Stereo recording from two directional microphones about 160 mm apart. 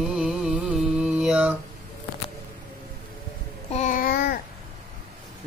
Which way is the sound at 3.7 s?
50° left (ahead or behind).